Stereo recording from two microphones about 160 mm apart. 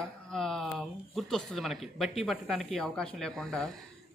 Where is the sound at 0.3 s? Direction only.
Centre (ahead or behind).